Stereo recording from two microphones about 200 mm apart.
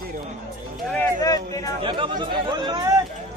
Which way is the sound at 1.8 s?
25° right (ahead or behind).